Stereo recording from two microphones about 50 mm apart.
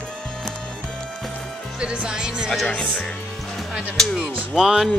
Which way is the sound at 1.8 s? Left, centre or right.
Right.